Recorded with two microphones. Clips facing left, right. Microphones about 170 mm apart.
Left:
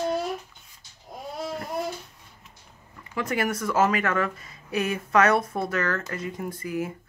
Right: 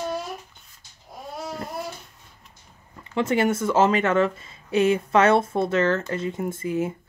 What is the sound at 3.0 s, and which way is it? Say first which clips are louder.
Speech: right 5 dB; 25° right (ahead or behind).